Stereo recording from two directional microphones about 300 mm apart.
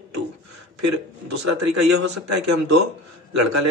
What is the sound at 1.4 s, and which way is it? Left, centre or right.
Speech, right.